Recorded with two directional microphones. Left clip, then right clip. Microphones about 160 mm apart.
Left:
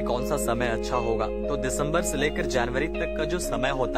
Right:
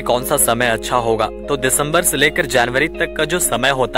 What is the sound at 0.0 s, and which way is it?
Speech, 45° right (ahead or behind).